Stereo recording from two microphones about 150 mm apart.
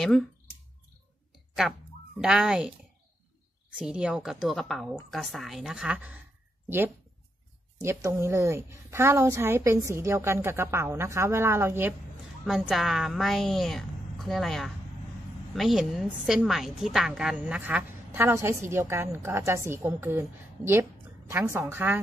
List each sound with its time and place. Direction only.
0.0 s a woman's voice: centre (ahead or behind)
2.1 s a woman's voice: 5° right (ahead or behind)
3.7 s a woman's voice: 5° right (ahead or behind)
7.8 s a woman's voice: 20° right (ahead or behind)
12.4 s a woman's voice: 5° right (ahead or behind)